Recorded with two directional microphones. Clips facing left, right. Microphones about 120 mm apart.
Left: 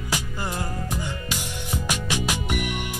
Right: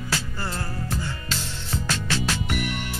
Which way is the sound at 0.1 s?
15° left (ahead or behind).